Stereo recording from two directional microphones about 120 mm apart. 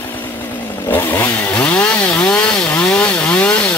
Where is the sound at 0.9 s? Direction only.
15° left (ahead or behind).